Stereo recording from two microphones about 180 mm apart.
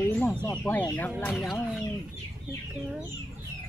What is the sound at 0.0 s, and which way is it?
Bird, 10° left (ahead or behind).